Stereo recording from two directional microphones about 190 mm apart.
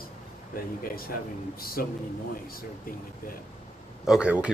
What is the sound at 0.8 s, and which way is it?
Speech, 50° left (ahead or behind).